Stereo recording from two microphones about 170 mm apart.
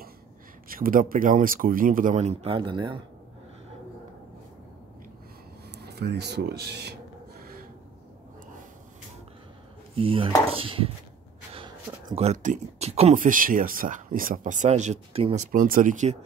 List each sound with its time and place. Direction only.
0.7 s speech: 55° right (ahead or behind); by 3.0 s 30° right (ahead or behind)
5.8 s speech: 75° right (ahead or behind)
9.9 s speech: 35° right (ahead or behind)
15.5 s speech: 55° right (ahead or behind)